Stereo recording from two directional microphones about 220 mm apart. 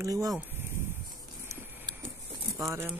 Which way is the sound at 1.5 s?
10° right (ahead or behind).